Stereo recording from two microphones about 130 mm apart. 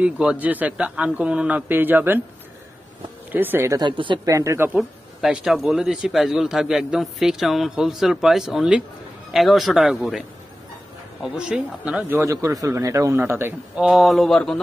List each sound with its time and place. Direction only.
0.0 s a man's voice: 10° right (ahead or behind)
3.3 s a man's voice: 15° right (ahead or behind)
3.8 s speech: 40° right (ahead or behind)
4.3 s a man's voice: 25° right (ahead or behind)
4.7 s speech: 5° right (ahead or behind)
11.2 s a man's voice: 5° right (ahead or behind)
12.2 s a man's voice: 25° right (ahead or behind)
13.7 s speech: centre (ahead or behind)